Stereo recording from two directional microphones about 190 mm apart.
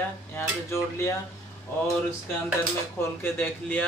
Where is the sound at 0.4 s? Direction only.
15° left (ahead or behind).